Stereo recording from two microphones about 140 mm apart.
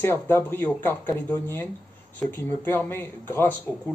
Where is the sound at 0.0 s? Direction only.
15° left (ahead or behind).